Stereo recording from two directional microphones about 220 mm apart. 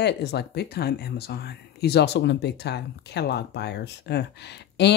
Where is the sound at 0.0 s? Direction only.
50° left (ahead or behind).